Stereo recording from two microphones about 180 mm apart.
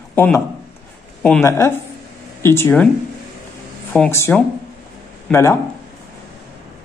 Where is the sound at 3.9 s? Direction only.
15° left (ahead or behind).